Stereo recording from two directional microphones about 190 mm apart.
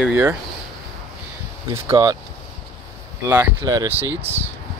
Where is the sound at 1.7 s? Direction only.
15° right (ahead or behind).